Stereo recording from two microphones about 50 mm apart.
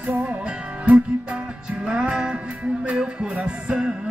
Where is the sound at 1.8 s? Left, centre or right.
Centre.